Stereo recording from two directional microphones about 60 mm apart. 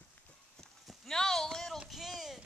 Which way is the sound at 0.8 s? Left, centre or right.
Centre.